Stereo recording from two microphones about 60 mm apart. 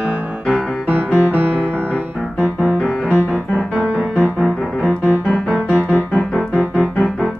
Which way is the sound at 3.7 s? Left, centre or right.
Right.